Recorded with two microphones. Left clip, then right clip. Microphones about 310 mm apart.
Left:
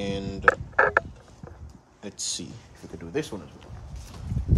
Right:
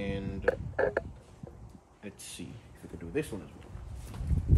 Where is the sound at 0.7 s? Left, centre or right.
Right.